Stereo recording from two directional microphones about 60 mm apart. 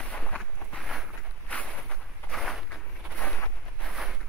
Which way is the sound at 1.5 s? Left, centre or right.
Left.